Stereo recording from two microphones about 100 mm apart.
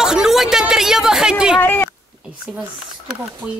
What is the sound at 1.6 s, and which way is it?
Speech, 20° left (ahead or behind).